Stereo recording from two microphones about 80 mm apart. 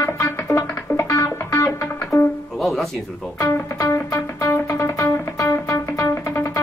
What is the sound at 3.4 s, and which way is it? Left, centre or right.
Music, left.